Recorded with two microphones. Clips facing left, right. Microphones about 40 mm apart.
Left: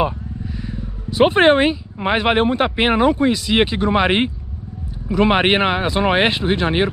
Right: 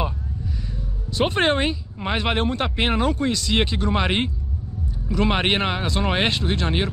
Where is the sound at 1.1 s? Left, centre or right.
Centre.